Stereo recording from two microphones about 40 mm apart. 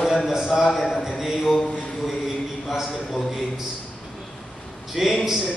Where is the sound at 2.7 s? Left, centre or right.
Centre.